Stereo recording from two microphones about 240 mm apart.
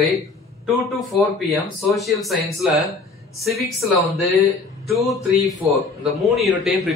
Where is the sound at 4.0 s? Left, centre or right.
Centre.